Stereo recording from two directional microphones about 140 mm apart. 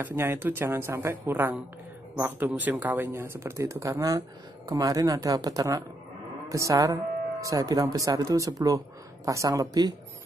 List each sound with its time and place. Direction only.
0.0 s speech: 15° right (ahead or behind)